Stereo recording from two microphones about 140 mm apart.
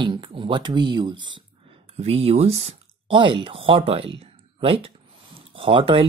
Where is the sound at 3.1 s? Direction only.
35° right (ahead or behind).